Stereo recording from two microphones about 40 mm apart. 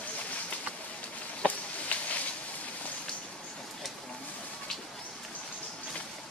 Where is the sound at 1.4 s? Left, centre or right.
Left.